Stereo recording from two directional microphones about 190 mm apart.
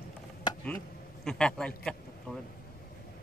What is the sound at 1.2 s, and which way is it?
Speech, 5° left (ahead or behind).